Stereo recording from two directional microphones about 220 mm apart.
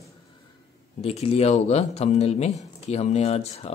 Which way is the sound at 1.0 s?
30° left (ahead or behind).